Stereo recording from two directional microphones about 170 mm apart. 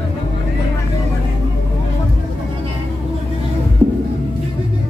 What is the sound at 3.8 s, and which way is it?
Music, 25° right (ahead or behind).